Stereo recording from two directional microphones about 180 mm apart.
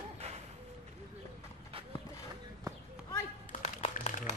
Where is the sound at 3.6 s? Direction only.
35° left (ahead or behind).